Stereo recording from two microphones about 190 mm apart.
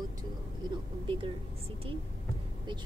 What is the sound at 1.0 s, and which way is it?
Speech, 25° right (ahead or behind).